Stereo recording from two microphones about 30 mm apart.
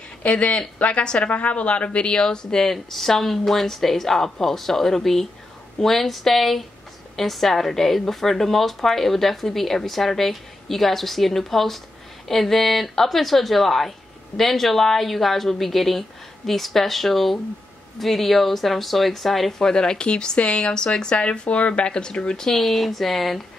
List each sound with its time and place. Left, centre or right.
0.2 s a woman's voice: left
2.6 s a woman's voice: centre
19.6 s a woman's voice: left
21.2 s a woman's voice: left
22.5 s a woman's voice: centre